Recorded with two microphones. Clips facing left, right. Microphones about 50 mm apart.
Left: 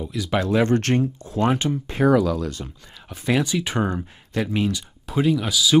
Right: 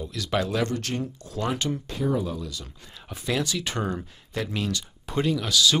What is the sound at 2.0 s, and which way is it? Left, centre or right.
Speech, left.